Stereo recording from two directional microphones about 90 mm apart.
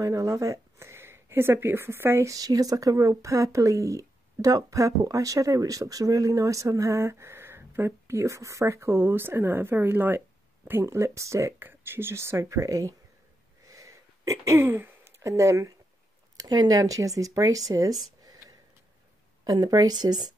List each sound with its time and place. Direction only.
0.0 s speech: 35° right (ahead or behind)
2.3 s speech: 45° right (ahead or behind)
13.7 s throat clearing: 35° right (ahead or behind)
16.3 s speech: 50° right (ahead or behind)
19.4 s a woman's voice: 50° right (ahead or behind)